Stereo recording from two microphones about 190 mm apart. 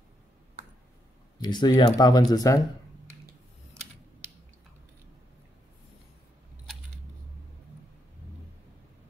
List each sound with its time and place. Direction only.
1.4 s speech: 20° left (ahead or behind)